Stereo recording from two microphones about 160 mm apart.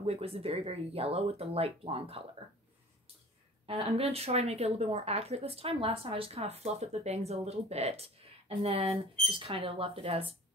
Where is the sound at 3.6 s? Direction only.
35° right (ahead or behind).